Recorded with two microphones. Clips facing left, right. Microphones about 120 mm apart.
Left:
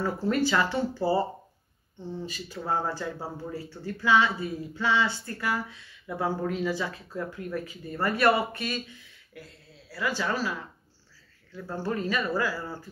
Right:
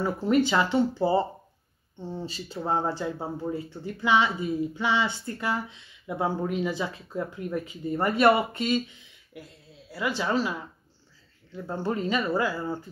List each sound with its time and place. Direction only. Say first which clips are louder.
0.0 s speech: right 3 dB; 20° right (ahead or behind)